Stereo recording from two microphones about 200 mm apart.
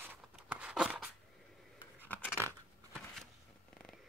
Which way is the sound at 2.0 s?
10° left (ahead or behind).